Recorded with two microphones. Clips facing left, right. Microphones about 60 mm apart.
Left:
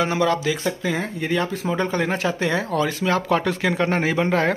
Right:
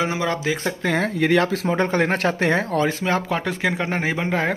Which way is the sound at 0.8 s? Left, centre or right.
Right.